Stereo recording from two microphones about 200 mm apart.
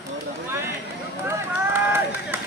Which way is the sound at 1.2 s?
10° right (ahead or behind).